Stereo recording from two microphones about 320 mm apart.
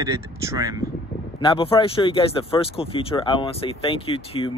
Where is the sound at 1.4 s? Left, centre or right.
Centre.